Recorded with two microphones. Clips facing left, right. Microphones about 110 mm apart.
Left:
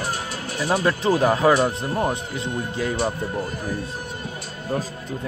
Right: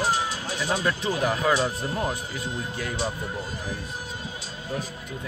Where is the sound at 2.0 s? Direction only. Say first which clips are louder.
Left 5 dB; 25° left (ahead or behind).